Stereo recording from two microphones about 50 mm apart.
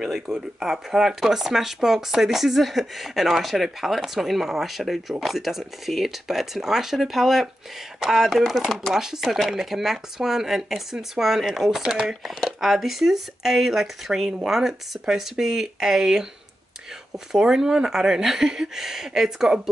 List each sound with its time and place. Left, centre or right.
0.3 s speech: centre
11.9 s speech: centre
12.4 s speech: centre
17.3 s speech: centre